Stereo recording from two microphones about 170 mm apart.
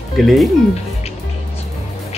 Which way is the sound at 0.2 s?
Centre (ahead or behind).